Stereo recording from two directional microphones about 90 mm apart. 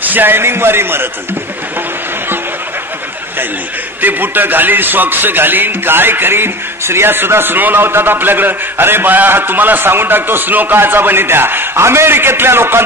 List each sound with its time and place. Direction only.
0.0 s speech: 20° right (ahead or behind)
4.0 s speech: 20° right (ahead or behind)